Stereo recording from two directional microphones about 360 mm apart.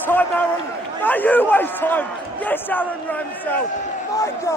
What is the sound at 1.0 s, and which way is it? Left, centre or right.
A man's voice, centre.